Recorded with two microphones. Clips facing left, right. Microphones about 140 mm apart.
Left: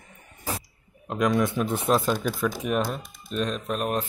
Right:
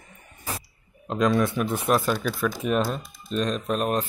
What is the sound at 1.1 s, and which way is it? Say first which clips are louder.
Speech: right 1 dB; 15° left (ahead or behind).